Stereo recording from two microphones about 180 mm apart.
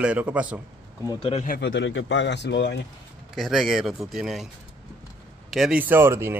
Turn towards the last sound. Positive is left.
turn(degrees=-15)  # may be behind; listen again after turning